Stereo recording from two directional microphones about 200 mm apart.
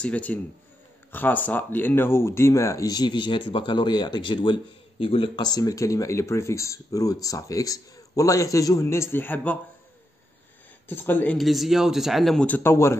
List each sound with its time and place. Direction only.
0.0 s speech: 5° left (ahead or behind)
10.9 s speech: 10° left (ahead or behind)